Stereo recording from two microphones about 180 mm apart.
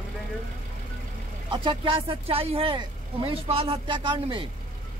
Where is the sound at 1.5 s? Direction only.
25° right (ahead or behind).